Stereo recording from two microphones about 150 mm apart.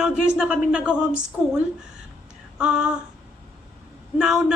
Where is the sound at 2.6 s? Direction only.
5° right (ahead or behind).